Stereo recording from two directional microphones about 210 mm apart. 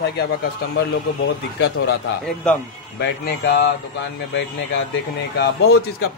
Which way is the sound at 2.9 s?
50° left (ahead or behind).